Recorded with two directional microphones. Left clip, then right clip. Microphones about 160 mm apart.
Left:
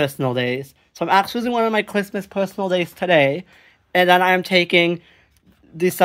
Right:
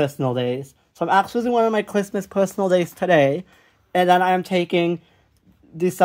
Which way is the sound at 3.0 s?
20° right (ahead or behind).